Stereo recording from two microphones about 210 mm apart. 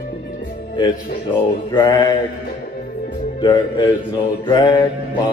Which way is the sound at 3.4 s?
20° left (ahead or behind).